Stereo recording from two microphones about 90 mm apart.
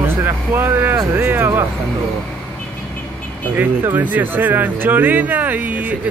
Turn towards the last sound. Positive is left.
turn(degrees=-20)  # may be behind; listen again after turning